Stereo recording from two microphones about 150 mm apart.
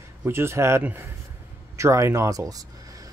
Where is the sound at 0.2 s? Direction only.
15° right (ahead or behind).